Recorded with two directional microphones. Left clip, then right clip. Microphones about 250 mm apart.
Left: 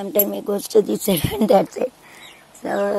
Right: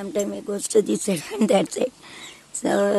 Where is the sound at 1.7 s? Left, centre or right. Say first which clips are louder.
Left 1 dB; right.